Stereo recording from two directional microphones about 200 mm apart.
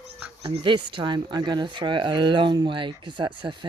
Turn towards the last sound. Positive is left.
turn(degrees=-25)  # may be behind; listen again after turning